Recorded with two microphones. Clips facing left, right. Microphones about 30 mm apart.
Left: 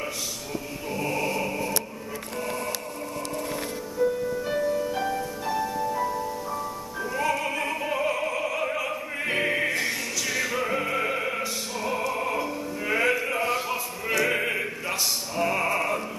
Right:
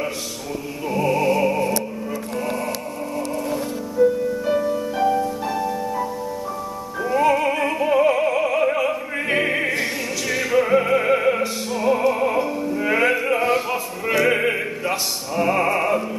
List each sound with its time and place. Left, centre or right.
0.8 s music: centre
4.0 s music: centre
7.0 s opera: centre
12.1 s music: centre